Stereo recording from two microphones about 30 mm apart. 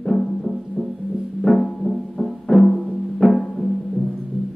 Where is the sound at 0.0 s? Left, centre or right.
Centre.